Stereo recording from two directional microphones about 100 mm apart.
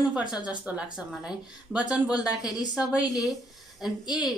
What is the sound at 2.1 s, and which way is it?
Speech, 40° left (ahead or behind).